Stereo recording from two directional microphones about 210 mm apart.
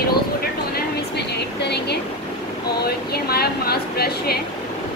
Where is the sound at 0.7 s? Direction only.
50° left (ahead or behind).